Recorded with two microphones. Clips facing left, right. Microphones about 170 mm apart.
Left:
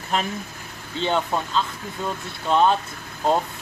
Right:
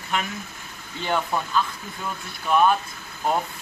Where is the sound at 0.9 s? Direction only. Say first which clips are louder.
Left 2 dB; 20° left (ahead or behind).